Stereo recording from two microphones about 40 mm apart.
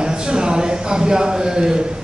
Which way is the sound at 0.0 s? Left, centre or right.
Right.